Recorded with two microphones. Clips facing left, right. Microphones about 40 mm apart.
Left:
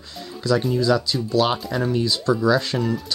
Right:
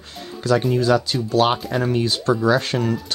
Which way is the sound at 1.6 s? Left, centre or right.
Right.